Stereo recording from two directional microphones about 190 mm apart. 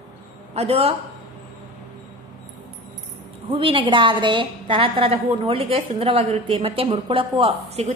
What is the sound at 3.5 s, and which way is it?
A woman's voice, 30° right (ahead or behind).